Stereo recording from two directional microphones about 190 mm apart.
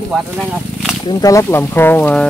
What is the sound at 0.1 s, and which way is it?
Speech, centre (ahead or behind).